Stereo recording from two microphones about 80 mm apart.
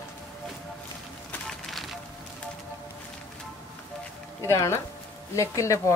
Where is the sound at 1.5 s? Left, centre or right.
Centre.